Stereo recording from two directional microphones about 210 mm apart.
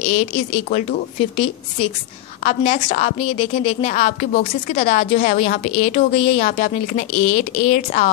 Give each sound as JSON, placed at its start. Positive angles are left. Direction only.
{"t": 0.0, "sound": "a woman's voice", "side_deg": 30}